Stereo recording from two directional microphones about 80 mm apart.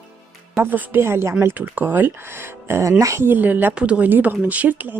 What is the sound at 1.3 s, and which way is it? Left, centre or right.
A woman's voice, right.